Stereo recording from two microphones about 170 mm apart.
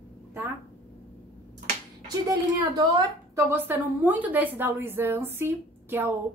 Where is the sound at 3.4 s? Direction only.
10° right (ahead or behind).